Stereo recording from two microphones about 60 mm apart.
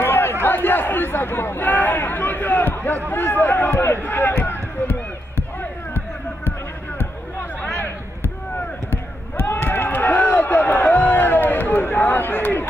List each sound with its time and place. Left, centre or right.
0.0 s a sound: left
3.1 s run: left
7.7 s basketball bounce: left
9.4 s run: left